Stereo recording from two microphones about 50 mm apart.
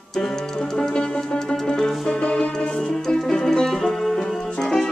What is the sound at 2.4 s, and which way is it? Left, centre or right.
Music, left.